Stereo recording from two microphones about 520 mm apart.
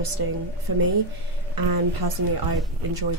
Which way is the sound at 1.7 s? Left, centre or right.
Right.